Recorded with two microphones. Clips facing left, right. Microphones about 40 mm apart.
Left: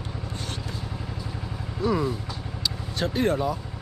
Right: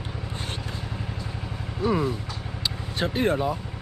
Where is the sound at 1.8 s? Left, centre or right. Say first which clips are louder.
Right 1 dB; centre.